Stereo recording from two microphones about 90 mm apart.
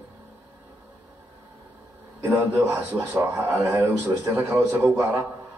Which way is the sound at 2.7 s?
30° right (ahead or behind).